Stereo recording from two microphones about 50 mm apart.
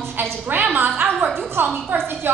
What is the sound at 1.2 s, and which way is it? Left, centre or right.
A woman's voice, right.